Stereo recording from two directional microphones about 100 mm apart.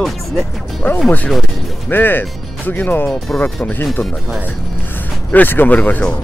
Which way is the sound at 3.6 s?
20° left (ahead or behind).